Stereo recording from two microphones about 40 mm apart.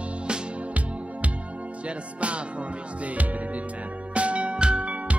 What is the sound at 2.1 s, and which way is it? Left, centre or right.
Music, right.